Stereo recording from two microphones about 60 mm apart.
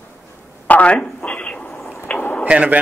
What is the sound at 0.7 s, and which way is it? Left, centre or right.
Speech, left.